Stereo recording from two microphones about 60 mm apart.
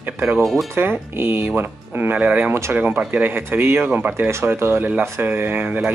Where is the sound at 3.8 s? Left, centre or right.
Right.